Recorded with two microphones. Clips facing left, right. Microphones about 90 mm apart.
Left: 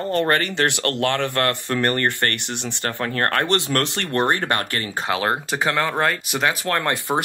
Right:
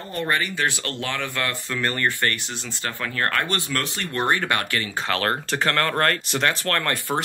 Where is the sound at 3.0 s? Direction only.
40° left (ahead or behind).